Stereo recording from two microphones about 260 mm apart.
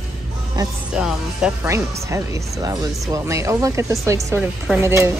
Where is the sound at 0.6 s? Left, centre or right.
Centre.